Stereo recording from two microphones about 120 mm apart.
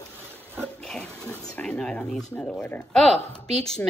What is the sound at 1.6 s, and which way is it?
A woman's voice, 10° left (ahead or behind).